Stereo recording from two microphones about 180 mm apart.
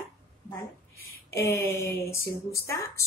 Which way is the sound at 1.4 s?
15° left (ahead or behind).